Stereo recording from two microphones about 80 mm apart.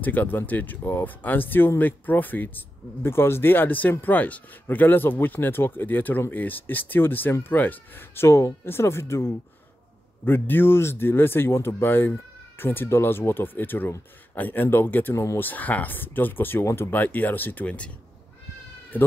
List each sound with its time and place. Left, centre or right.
0.0 s speech: left